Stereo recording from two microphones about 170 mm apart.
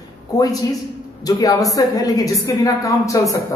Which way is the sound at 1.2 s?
20° left (ahead or behind).